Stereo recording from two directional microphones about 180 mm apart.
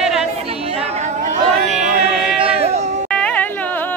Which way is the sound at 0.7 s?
35° right (ahead or behind).